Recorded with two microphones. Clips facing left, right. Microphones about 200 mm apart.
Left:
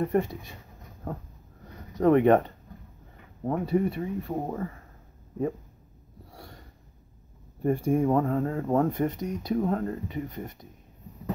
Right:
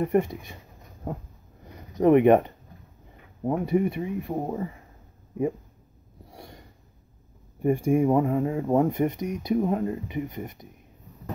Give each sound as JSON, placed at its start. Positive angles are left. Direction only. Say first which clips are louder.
{"t": 0.0, "sound": "speech", "louder": "right 2 dB", "side_deg": -15}
{"t": 1.7, "sound": "speech", "louder": "right 2 dB", "side_deg": -15}
{"t": 6.3, "sound": "a sound", "louder": "right 2 dB", "side_deg": -15}
{"t": 7.6, "sound": "speech", "louder": "right 2 dB", "side_deg": -10}